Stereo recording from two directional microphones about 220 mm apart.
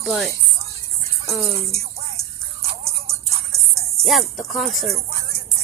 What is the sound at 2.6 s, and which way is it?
Music, 25° right (ahead or behind).